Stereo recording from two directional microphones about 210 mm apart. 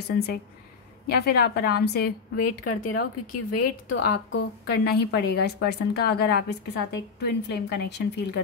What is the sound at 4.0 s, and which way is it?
A woman's voice, 50° left (ahead or behind).